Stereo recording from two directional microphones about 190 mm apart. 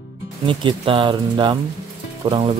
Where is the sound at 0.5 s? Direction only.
25° right (ahead or behind).